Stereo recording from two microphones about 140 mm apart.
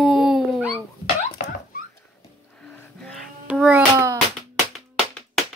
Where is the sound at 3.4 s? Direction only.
5° right (ahead or behind).